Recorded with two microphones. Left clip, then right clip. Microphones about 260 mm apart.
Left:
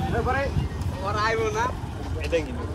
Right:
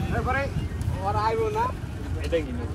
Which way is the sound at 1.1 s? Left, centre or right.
Centre.